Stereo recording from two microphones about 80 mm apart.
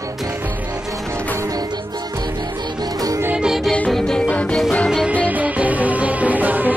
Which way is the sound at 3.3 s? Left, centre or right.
Centre.